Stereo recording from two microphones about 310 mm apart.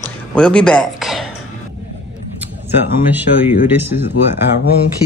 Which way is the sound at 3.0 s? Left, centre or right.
Centre.